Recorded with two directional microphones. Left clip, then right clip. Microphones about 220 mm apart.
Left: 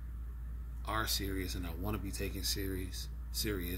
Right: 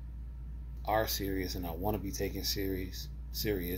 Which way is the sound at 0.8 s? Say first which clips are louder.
Right 5 dB; 15° left (ahead or behind).